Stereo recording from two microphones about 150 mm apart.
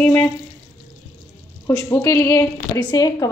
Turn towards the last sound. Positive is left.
turn(degrees=25)  # may be behind; listen again after turning